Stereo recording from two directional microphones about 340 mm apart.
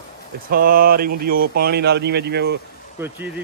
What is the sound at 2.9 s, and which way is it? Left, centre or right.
Speech, centre.